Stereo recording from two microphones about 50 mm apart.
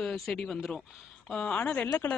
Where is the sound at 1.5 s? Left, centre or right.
Left.